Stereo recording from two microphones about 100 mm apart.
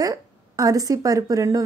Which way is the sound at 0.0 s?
35° right (ahead or behind).